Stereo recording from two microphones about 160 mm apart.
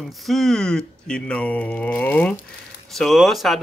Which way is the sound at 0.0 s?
Centre (ahead or behind).